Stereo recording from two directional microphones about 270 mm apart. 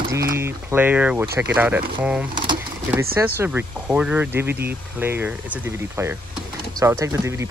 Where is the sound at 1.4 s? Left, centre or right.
Centre.